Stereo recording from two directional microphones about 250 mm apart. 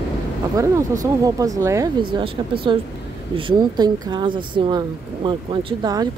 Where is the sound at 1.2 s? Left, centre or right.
Centre.